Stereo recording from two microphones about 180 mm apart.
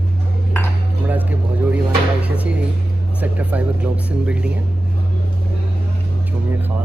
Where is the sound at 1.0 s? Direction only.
10° right (ahead or behind).